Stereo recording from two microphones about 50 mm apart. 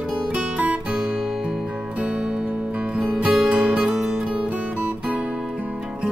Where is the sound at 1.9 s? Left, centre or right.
Right.